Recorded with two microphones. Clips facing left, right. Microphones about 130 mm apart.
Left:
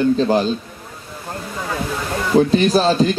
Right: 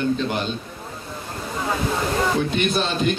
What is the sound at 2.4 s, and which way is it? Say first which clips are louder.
Speech: left 8 dB; 35° left (ahead or behind).